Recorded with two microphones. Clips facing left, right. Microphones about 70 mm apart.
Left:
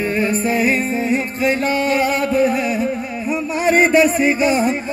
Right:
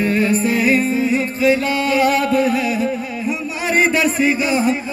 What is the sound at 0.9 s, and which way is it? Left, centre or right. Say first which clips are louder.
Music: right 1 dB; left.